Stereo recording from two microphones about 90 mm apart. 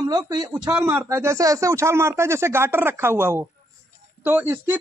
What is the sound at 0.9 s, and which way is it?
Speech, 30° right (ahead or behind).